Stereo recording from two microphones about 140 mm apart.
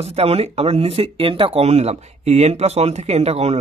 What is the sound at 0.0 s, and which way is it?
Speech, 50° right (ahead or behind).